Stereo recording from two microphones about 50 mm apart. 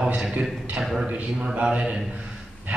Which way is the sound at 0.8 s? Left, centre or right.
Centre.